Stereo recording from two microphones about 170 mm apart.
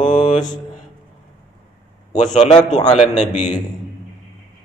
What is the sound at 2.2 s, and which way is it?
A man's voice, 40° left (ahead or behind).